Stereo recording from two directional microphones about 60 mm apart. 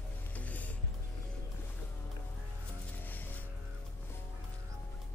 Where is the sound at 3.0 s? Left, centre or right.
Left.